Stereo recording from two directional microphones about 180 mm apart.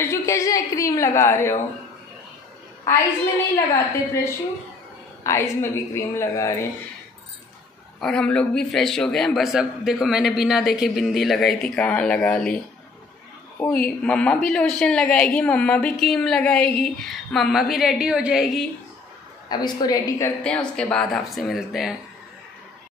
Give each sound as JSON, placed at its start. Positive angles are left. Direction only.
{"t": 0.0, "sound": "a sound", "side_deg": 15}
{"t": 3.5, "sound": "a woman's voice", "side_deg": 15}
{"t": 8.0, "sound": "a woman's voice", "side_deg": 5}
{"t": 13.6, "sound": "a woman's voice", "side_deg": 5}
{"t": 19.5, "sound": "a woman's voice", "side_deg": 20}
{"t": 20.4, "sound": "a woman's voice", "side_deg": 5}